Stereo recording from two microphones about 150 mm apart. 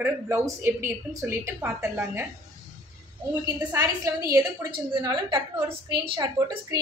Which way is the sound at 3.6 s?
20° right (ahead or behind).